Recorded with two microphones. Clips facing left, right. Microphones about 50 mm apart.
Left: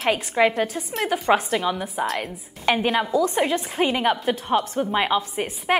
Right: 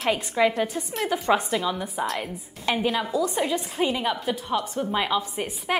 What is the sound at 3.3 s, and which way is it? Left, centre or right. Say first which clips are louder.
A woman's voice: left 3 dB; left.